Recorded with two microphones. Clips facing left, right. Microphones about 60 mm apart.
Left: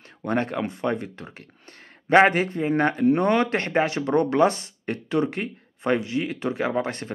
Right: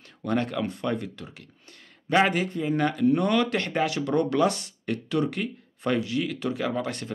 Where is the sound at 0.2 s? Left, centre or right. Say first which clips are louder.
Left 2 dB; left.